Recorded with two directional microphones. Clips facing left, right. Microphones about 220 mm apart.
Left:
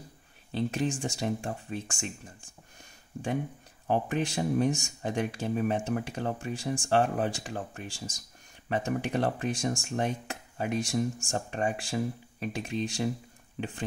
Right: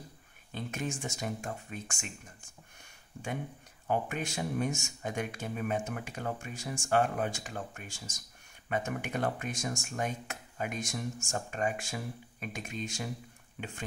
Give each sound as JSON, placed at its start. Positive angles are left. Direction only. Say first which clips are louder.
{"t": 0.5, "sound": "speech", "louder": "left 7 dB", "side_deg": 35}
{"t": 3.8, "sound": "speech", "louder": "left 4 dB", "side_deg": 35}